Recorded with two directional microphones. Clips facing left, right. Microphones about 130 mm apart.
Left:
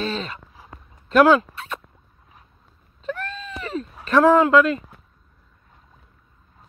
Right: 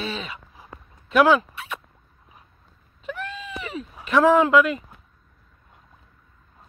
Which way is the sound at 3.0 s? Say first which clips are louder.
Left 2 dB; 10° right (ahead or behind).